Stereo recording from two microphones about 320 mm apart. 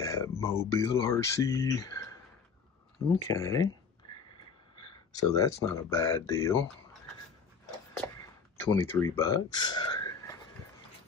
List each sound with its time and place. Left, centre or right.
0.0 s speech: centre
3.3 s speech: centre
4.7 s speech: centre
8.0 s speech: centre
9.9 s a sound: centre